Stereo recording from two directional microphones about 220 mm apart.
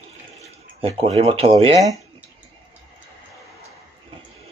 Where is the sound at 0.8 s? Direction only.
25° right (ahead or behind).